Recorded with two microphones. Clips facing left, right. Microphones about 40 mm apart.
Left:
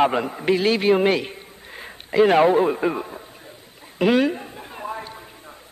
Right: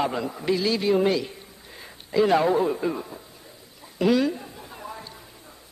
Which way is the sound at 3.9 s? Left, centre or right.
Left.